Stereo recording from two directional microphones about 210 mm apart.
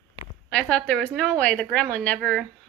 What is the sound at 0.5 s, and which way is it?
A woman's voice, 5° left (ahead or behind).